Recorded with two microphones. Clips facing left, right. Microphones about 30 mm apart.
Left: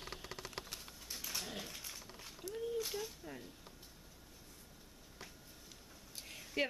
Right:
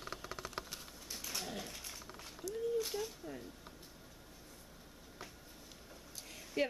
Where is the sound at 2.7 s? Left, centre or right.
Centre.